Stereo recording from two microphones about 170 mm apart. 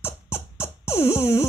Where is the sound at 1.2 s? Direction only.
15° left (ahead or behind).